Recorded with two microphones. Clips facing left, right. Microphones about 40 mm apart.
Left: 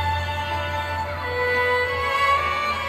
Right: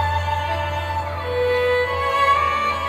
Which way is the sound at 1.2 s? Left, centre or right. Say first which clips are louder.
Right 3 dB; right.